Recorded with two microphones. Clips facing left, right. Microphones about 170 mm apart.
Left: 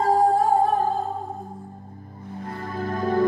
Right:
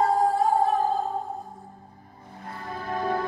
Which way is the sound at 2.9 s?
45° left (ahead or behind).